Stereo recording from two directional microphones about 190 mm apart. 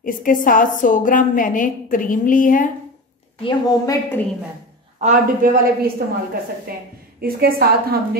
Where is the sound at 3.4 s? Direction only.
20° left (ahead or behind).